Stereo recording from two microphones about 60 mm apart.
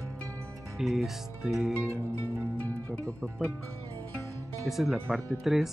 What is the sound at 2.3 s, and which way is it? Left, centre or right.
Music, right.